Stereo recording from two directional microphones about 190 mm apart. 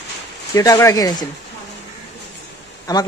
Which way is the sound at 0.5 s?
15° left (ahead or behind).